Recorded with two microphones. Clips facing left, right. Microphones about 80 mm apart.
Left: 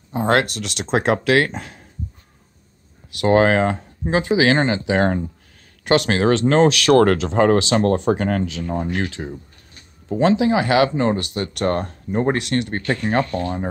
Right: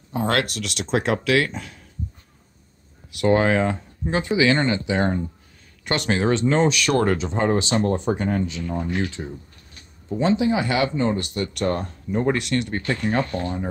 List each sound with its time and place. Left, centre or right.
0.1 s speech: left
3.2 s speech: left
8.6 s speech: left
10.0 s speech: left